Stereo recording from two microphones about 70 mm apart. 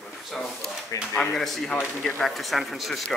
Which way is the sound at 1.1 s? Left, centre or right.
Centre.